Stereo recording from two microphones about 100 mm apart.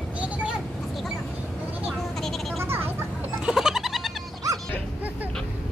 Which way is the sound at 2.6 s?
20° right (ahead or behind).